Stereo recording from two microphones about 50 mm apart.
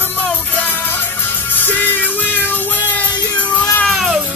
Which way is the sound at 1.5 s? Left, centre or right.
Left.